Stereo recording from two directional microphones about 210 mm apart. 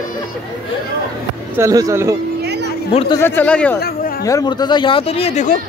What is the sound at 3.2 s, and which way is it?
Speech, 10° left (ahead or behind).